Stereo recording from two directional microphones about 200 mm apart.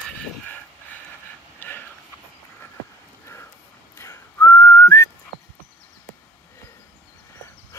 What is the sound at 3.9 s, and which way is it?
Whistling, 15° left (ahead or behind).